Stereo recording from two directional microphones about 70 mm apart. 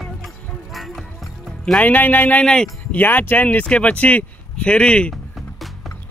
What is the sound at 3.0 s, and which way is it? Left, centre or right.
Speech, left.